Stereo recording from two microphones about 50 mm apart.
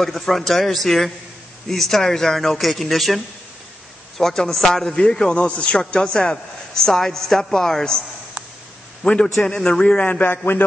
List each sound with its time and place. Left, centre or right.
0.0 s speech: centre
4.2 s a man's voice: centre
9.0 s a man's voice: centre
10.0 s a man's voice: left